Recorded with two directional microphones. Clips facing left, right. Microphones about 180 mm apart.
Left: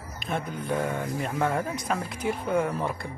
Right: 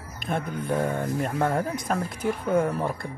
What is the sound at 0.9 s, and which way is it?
Speech, 50° right (ahead or behind).